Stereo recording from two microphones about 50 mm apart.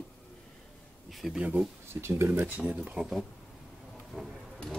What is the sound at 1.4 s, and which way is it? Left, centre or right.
Speech, right.